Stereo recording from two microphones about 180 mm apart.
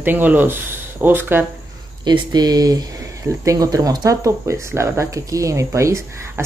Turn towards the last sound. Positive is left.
turn(degrees=-15)  # may be behind; listen again after turning